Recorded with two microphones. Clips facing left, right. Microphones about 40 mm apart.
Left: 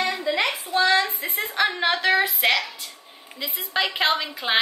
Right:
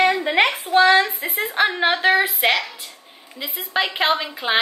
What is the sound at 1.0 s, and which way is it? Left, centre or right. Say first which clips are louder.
Speech: right 3 dB; right.